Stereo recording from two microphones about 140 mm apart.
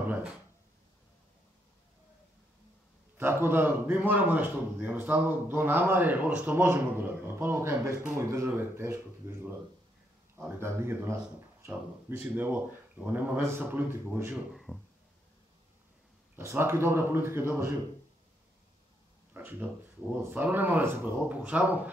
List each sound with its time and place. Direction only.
0.0 s a sound: 10° right (ahead or behind)
3.2 s a man's voice: 15° right (ahead or behind)
14.3 s speech: centre (ahead or behind)
16.3 s a man's voice: 20° right (ahead or behind)
19.4 s a sound: 15° right (ahead or behind)
20.1 s a man's voice: 10° right (ahead or behind)